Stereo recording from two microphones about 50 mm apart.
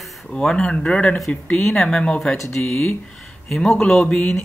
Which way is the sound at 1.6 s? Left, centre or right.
Centre.